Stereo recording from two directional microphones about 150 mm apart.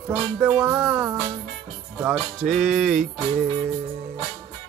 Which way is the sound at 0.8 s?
Centre (ahead or behind).